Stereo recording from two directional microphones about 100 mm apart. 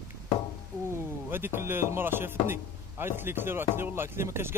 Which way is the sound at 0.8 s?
25° right (ahead or behind).